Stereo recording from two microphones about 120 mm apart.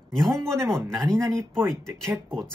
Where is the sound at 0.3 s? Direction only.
20° right (ahead or behind).